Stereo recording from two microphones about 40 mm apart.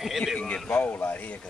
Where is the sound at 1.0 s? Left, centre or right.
Left.